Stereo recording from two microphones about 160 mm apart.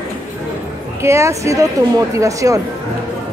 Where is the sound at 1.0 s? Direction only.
15° right (ahead or behind).